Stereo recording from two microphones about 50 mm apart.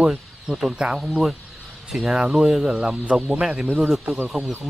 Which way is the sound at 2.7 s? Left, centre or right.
Right.